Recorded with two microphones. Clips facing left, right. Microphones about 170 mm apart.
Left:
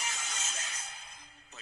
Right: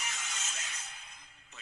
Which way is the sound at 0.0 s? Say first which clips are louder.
Left 2 dB; 35° left (ahead or behind).